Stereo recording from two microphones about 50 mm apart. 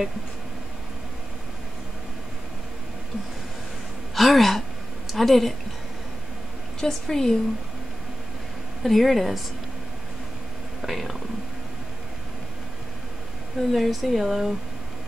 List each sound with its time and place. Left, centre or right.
4.1 s a sound: centre
6.8 s a woman's voice: centre
8.8 s speech: centre
10.8 s speech: centre
13.7 s speech: centre